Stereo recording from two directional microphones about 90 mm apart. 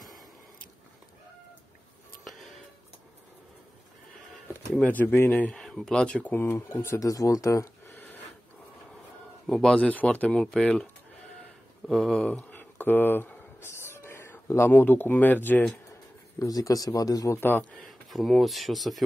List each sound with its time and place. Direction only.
4.8 s speech: 20° left (ahead or behind)
5.5 s speech: 5° left (ahead or behind)
6.3 s speech: 25° left (ahead or behind)
7.1 s speech: 40° left (ahead or behind)
7.8 s a sound: 25° left (ahead or behind)
9.5 s speech: 5° left (ahead or behind)
11.9 s speech: centre (ahead or behind)
12.2 s a sound: 15° left (ahead or behind)
16.3 s a man's voice: 40° left (ahead or behind)
17.4 s speech: 20° left (ahead or behind)
17.8 s speech: centre (ahead or behind)